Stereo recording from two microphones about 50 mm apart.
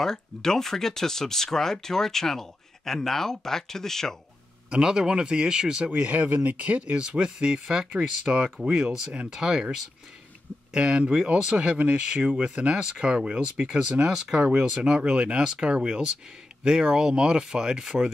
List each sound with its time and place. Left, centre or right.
0.0 s speech: centre
4.6 s speech: centre
7.0 s speech: centre
14.1 s speech: centre
14.5 s speech: centre